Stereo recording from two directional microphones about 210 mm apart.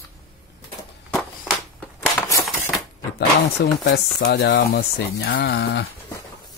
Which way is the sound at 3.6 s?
50° left (ahead or behind).